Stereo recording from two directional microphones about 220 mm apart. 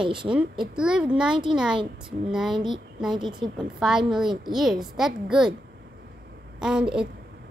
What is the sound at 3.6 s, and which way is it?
Speech, centre (ahead or behind).